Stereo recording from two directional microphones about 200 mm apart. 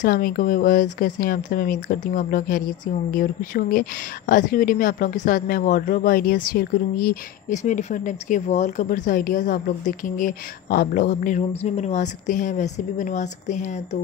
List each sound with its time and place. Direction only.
0.0 s a woman's voice: 45° left (ahead or behind)